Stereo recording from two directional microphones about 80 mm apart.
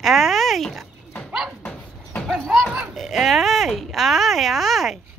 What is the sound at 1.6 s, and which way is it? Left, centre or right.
Dog, centre.